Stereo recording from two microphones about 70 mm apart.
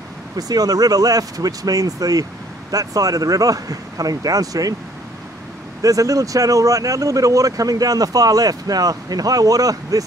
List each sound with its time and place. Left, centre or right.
0.4 s speech: right
5.8 s speech: right